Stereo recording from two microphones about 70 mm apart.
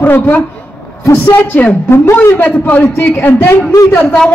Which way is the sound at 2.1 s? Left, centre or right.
Left.